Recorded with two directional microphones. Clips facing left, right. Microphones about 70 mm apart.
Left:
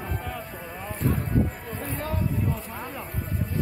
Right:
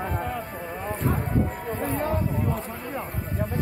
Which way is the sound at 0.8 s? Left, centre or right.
Right.